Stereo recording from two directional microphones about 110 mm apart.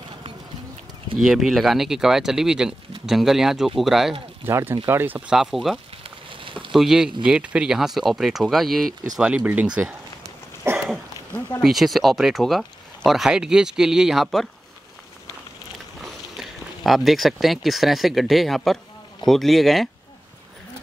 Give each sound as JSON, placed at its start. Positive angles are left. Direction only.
{"t": 1.2, "sound": "speech", "side_deg": -5}
{"t": 4.5, "sound": "speech", "side_deg": -20}
{"t": 5.3, "sound": "speech", "side_deg": -5}
{"t": 6.0, "sound": "fire", "side_deg": -50}
{"t": 6.7, "sound": "speech", "side_deg": -5}
{"t": 10.6, "sound": "a sound", "side_deg": -25}
{"t": 11.6, "sound": "speech", "side_deg": 0}
{"t": 16.0, "sound": "speech", "side_deg": 0}